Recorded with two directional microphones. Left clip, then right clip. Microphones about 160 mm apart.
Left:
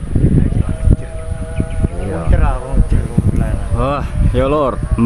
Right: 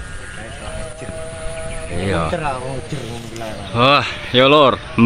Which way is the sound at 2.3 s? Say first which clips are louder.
Even; 40° right (ahead or behind).